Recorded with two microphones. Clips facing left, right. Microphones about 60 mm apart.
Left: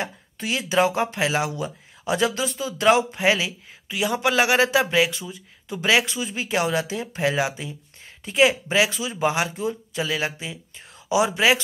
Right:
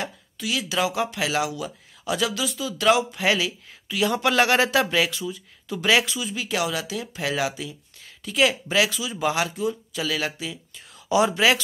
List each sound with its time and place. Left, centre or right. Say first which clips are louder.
0.0 s speech: left 1 dB; left
6.0 s speech: left 1 dB; left; by 11.5 s centre